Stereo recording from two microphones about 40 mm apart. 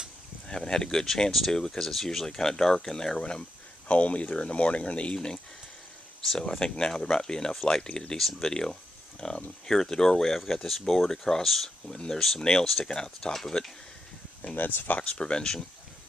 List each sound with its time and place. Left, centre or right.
0.5 s speech: centre
3.9 s speech: left
6.6 s speech: centre
8.2 s speech: centre
8.5 s speech: centre
14.5 s speech: left
15.0 s speech: left